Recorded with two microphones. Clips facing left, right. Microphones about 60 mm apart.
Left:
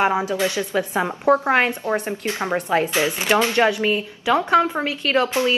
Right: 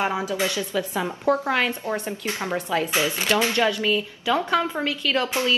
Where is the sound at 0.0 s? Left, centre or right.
Left.